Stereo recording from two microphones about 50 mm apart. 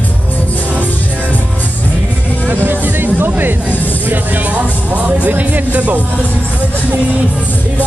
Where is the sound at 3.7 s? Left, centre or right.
Left.